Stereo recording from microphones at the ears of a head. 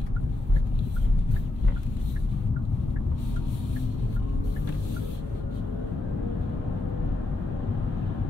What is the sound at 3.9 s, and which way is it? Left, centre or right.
Vehicle, left.